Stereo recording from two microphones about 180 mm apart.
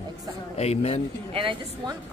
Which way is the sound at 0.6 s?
35° left (ahead or behind).